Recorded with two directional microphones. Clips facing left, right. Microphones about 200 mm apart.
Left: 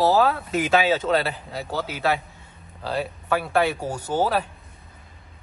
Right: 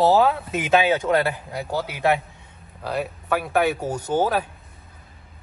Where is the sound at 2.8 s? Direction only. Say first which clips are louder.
Even; 10° right (ahead or behind).